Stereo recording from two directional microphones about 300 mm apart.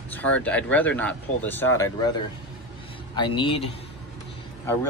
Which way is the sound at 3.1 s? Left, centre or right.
Centre.